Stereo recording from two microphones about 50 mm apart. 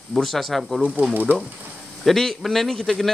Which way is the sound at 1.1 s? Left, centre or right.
Right.